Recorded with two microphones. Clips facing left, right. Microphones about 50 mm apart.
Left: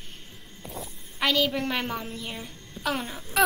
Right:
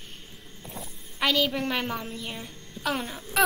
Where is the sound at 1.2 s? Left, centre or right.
Centre.